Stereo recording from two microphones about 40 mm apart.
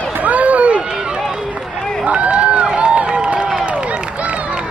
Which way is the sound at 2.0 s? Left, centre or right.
Right.